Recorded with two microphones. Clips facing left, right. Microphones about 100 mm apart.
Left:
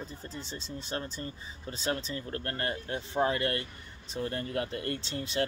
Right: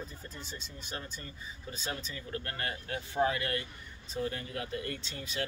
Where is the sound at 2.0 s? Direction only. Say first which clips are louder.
Left 4 dB; 30° left (ahead or behind).